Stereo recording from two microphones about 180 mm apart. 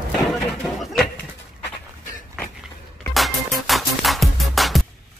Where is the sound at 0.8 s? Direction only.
Centre (ahead or behind).